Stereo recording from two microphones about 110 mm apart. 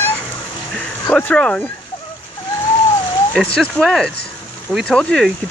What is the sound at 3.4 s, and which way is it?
Speech, 10° left (ahead or behind).